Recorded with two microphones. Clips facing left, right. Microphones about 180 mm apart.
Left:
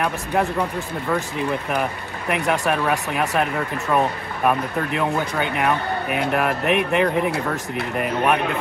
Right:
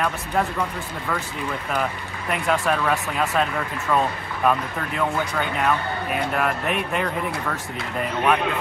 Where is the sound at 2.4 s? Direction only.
15° left (ahead or behind).